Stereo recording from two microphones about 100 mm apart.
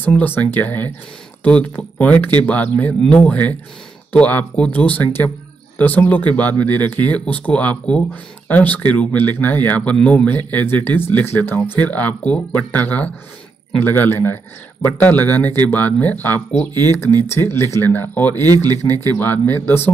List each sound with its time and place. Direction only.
0.0 s speech: 20° left (ahead or behind)